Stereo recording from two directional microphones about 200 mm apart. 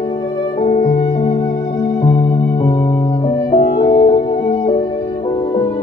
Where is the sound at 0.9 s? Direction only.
25° left (ahead or behind).